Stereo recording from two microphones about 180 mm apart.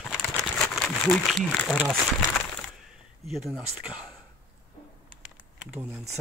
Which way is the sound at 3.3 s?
Centre (ahead or behind).